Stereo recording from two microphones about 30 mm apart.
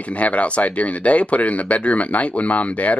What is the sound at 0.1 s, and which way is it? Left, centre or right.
Speech, left.